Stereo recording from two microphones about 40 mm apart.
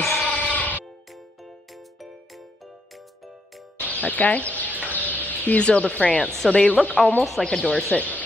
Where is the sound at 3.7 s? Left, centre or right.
Left.